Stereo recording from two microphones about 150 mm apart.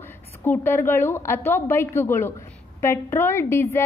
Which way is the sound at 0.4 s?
15° left (ahead or behind).